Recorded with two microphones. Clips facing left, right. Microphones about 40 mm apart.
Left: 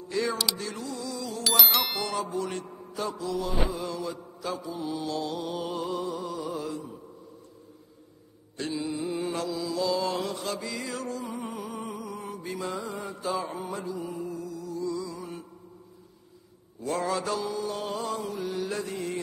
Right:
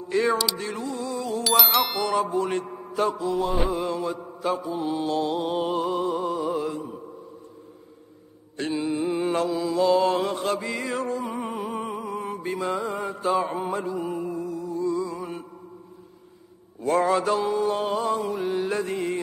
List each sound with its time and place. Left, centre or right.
0.1 s speech: right
0.6 s music: right
1.4 s music: centre
2.0 s mantra: right
8.5 s mantra: right
16.8 s mantra: right